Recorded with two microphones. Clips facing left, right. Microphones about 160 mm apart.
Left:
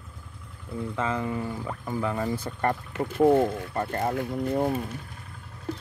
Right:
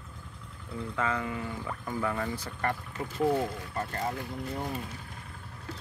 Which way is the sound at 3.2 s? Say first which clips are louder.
Left 8 dB; 50° left (ahead or behind).